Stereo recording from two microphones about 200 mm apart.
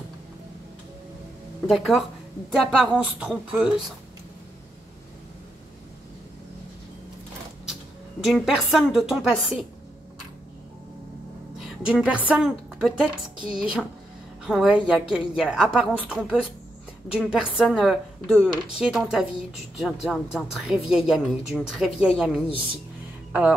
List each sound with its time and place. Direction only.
1.7 s speech: centre (ahead or behind)
8.2 s speech: centre (ahead or behind)
11.8 s speech: 5° right (ahead or behind)